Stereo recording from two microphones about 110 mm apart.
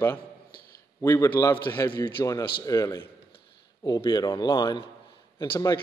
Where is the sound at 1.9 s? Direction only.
45° left (ahead or behind).